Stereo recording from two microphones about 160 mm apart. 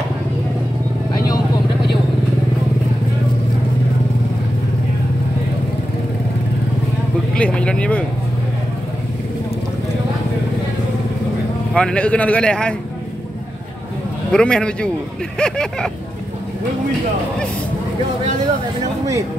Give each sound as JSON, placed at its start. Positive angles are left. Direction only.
{"t": 1.1, "sound": "vehicle", "side_deg": 25}
{"t": 7.3, "sound": "speech", "side_deg": 5}
{"t": 11.7, "sound": "a man's voice", "side_deg": 5}
{"t": 14.3, "sound": "a man's voice", "side_deg": 5}